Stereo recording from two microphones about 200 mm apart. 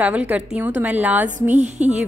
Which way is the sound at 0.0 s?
5° right (ahead or behind).